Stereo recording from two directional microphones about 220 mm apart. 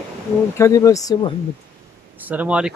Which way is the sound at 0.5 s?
15° left (ahead or behind).